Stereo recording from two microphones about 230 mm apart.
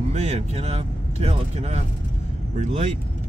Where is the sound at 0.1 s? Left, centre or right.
Right.